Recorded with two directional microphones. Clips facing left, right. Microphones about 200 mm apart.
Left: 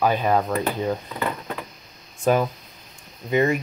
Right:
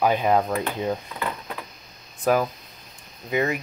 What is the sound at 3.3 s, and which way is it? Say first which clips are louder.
Speech: left 4 dB; 5° right (ahead or behind).